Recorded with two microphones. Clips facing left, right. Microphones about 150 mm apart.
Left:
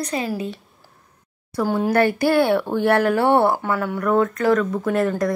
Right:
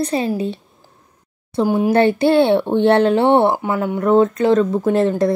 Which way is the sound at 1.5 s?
15° right (ahead or behind).